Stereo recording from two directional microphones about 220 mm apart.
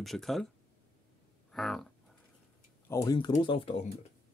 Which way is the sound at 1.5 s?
Centre (ahead or behind).